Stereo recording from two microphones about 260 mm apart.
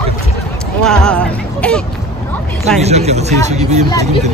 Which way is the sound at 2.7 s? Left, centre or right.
Right.